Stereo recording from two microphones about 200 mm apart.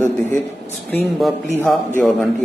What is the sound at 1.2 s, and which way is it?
Speech, centre (ahead or behind).